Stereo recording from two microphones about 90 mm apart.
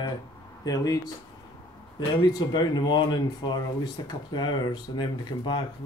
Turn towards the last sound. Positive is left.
turn(degrees=55)  # may be behind; listen again after turning